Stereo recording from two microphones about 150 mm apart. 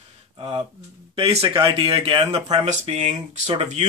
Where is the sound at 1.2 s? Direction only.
40° right (ahead or behind).